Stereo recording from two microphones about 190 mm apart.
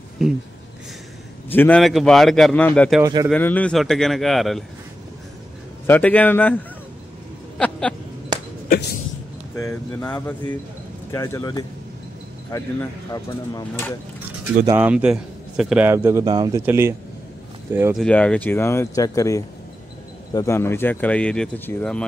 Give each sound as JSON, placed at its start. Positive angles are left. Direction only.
{"t": 0.2, "sound": "a sound", "side_deg": 0}
{"t": 1.5, "sound": "a man's voice", "side_deg": 10}
{"t": 3.0, "sound": "speech", "side_deg": -20}
{"t": 3.3, "sound": "a man's voice", "side_deg": 10}
{"t": 5.9, "sound": "speech", "side_deg": 10}
{"t": 7.5, "sound": "a sound", "side_deg": 5}
{"t": 8.6, "sound": "a sound", "side_deg": 55}
{"t": 9.6, "sound": "speech", "side_deg": 15}
{"t": 14.7, "sound": "a man's voice", "side_deg": -10}
{"t": 17.9, "sound": "speech", "side_deg": 5}